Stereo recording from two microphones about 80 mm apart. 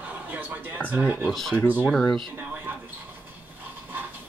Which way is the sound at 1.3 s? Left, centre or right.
Centre.